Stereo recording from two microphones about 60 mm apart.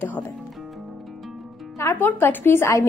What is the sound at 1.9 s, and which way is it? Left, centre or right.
Speech, left.